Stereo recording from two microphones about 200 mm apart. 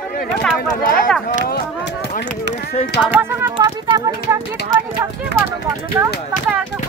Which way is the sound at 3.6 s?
20° right (ahead or behind).